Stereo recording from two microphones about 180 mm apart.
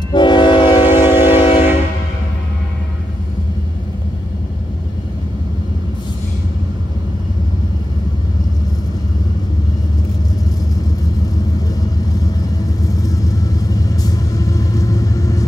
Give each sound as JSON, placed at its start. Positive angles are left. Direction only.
{"t": 0.1, "sound": "train", "side_deg": 25}
{"t": 12.8, "sound": "vehicle", "side_deg": 20}